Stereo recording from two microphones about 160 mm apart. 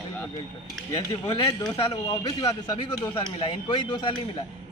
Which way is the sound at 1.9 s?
20° left (ahead or behind).